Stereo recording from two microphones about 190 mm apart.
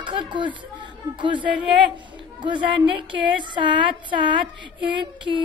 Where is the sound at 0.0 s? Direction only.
25° right (ahead or behind).